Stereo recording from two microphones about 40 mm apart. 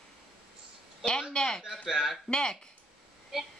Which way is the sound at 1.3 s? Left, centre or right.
Centre.